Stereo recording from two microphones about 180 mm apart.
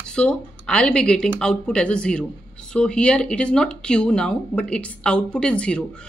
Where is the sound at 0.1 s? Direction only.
5° left (ahead or behind).